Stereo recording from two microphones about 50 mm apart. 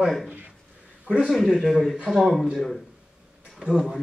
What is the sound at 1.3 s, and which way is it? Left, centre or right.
Speech, centre.